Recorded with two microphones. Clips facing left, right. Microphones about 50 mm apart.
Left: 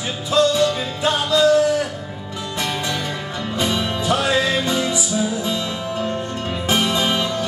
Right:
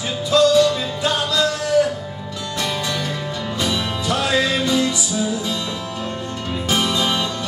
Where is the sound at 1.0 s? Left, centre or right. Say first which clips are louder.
Left 4 dB; centre.